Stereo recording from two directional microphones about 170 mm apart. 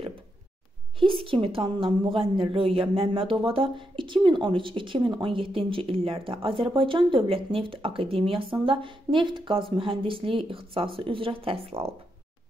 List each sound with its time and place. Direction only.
0.9 s a woman's voice: 30° right (ahead or behind)